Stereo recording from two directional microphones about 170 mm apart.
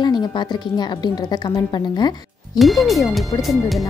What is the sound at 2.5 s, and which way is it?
Speech, centre (ahead or behind).